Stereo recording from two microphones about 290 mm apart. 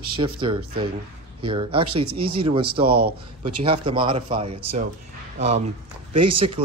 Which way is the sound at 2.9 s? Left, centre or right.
Right.